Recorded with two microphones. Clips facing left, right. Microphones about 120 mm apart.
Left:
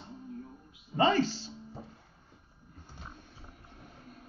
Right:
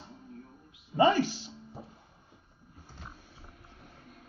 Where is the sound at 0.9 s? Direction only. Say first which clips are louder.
Right 2 dB; 10° right (ahead or behind).